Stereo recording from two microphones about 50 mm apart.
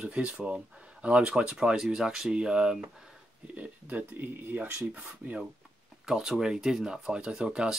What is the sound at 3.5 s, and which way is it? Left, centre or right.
Speech, right.